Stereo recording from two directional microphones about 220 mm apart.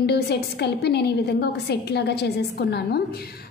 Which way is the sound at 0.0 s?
50° left (ahead or behind).